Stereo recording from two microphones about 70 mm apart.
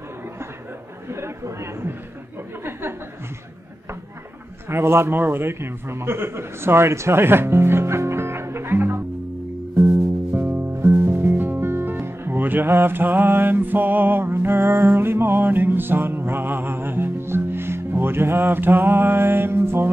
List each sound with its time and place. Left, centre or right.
1.0 s speech: right
4.6 s a man's voice: right
10.5 s music: right
12.6 s mantra: right